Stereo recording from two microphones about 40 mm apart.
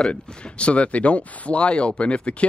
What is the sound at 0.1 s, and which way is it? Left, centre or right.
Speech, left.